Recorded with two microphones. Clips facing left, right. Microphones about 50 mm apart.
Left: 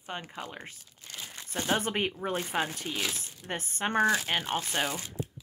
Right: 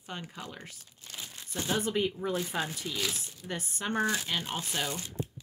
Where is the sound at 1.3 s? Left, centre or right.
Left.